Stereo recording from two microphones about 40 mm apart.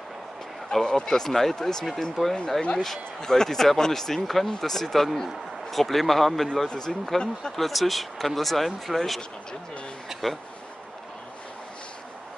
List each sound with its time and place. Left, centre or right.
0.7 s speech: centre
7.5 s speech: centre
10.2 s speech: centre